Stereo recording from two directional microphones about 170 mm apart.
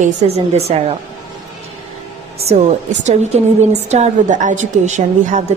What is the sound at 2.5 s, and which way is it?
A woman's voice, 45° right (ahead or behind).